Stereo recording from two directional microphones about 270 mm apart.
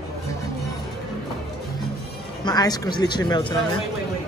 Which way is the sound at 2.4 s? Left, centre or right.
Centre.